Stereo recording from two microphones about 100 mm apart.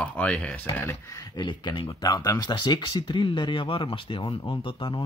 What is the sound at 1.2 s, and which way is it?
Speech, 50° left (ahead or behind).